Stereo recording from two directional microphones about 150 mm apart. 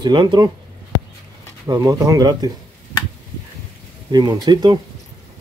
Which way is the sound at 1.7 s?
25° right (ahead or behind).